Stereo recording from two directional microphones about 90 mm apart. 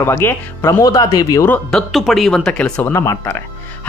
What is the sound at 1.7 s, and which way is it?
Speech, centre (ahead or behind).